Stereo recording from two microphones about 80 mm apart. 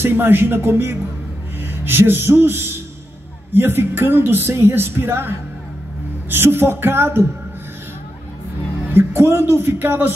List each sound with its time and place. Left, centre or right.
0.0 s speech: right
6.3 s speech: right
8.9 s speech: right